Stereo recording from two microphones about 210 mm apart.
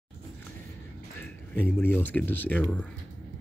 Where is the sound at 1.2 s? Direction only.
10° left (ahead or behind).